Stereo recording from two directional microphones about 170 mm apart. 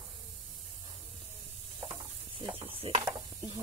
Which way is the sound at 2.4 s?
30° right (ahead or behind).